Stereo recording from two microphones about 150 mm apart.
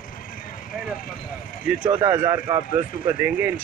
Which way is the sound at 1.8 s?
30° right (ahead or behind).